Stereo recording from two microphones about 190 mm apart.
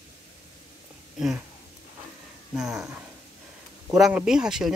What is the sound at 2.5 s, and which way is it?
Speech, centre (ahead or behind).